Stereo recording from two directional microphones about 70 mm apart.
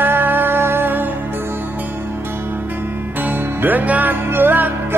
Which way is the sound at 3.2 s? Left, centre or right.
Right.